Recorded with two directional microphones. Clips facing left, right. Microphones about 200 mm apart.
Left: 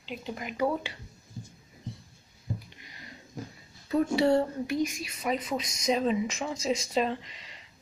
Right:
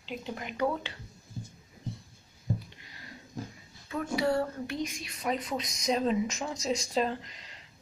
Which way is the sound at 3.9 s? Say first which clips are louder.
Left 5 dB; 25° left (ahead or behind).